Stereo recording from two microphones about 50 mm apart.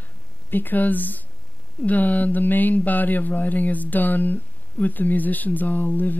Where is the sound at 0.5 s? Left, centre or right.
Left.